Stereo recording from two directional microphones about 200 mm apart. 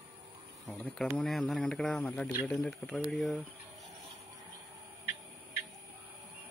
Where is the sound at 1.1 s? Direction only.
Centre (ahead or behind).